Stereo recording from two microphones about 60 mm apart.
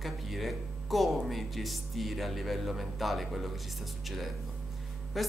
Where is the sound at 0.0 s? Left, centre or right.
Centre.